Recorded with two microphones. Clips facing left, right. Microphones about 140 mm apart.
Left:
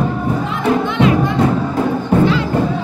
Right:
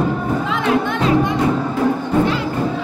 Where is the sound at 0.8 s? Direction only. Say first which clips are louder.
Left 5 dB; 45° right (ahead or behind).